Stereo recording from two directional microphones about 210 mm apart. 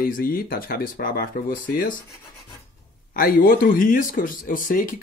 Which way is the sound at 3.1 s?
45° left (ahead or behind).